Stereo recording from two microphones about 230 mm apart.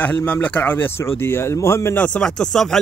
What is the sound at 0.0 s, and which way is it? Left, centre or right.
Speech, centre.